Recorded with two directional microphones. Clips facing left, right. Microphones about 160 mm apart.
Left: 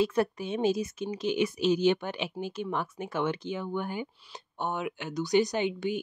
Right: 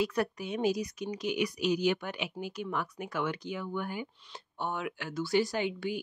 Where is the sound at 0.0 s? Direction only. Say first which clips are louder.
Left 4 dB; 25° left (ahead or behind).